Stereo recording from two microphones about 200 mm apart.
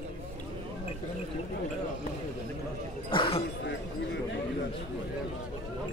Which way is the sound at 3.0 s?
25° left (ahead or behind).